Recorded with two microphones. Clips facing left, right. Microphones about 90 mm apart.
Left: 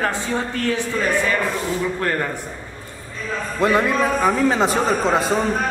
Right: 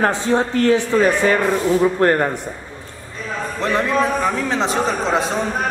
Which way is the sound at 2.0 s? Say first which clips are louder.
Right 7 dB; 45° right (ahead or behind).